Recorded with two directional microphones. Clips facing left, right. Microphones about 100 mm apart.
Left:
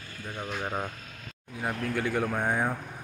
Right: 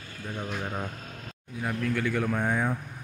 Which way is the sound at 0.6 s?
15° left (ahead or behind).